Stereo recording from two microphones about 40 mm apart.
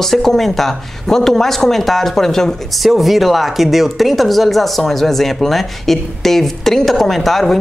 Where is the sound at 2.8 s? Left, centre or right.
Centre.